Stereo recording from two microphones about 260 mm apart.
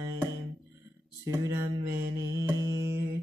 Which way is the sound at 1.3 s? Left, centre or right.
Centre.